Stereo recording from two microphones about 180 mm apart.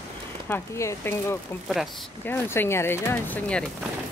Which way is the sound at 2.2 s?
10° left (ahead or behind).